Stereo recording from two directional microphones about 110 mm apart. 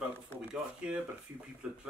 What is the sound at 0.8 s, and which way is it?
Speech, 10° right (ahead or behind).